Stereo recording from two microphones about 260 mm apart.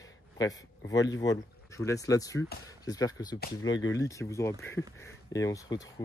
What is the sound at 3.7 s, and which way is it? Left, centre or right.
Speech, left.